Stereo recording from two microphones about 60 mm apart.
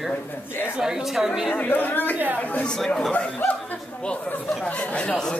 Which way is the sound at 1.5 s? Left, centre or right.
Left.